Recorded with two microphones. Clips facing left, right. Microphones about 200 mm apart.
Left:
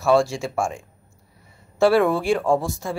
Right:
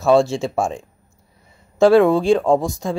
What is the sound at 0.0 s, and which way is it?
A man's voice, 25° right (ahead or behind).